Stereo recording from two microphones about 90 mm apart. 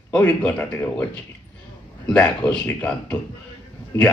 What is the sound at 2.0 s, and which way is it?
Speech, 10° left (ahead or behind).